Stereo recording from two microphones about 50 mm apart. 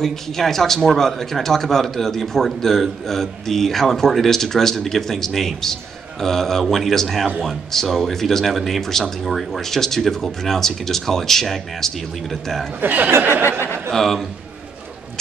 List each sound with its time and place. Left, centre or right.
0.0 s speech: centre
12.8 s speech: right
13.5 s chuckle: left
13.8 s a man's voice: centre